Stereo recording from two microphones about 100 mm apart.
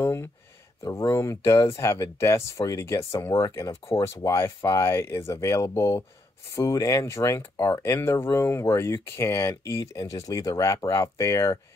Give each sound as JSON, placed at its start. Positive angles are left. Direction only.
{"t": 0.0, "sound": "speech", "side_deg": 25}